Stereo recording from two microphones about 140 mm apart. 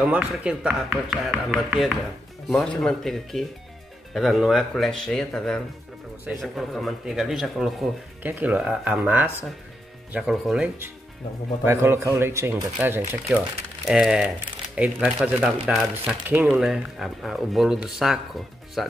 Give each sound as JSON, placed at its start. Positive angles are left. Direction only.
{"t": 0.0, "sound": "speech", "side_deg": -10}
{"t": 10.3, "sound": "speech", "side_deg": 0}
{"t": 11.6, "sound": "speech", "side_deg": -15}
{"t": 13.8, "sound": "speech", "side_deg": -5}